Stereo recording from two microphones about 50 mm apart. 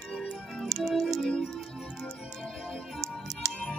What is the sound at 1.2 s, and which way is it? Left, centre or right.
Music, centre.